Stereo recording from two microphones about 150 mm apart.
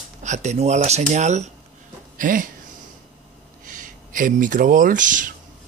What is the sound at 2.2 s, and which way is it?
Speech, 60° right (ahead or behind).